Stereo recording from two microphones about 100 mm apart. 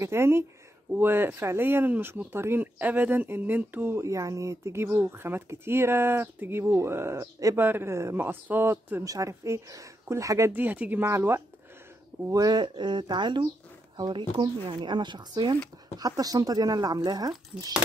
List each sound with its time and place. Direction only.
0.0 s speech: 25° right (ahead or behind)
7.5 s speech: 20° right (ahead or behind)
9.0 s speech: 35° right (ahead or behind)
10.5 s speech: 15° right (ahead or behind)
12.3 s speech: 40° right (ahead or behind)
16.0 s speech: 40° right (ahead or behind)